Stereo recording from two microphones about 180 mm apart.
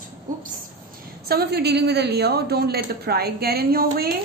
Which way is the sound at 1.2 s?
60° right (ahead or behind).